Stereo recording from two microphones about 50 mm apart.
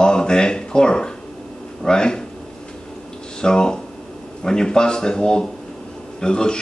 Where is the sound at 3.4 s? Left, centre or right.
Centre.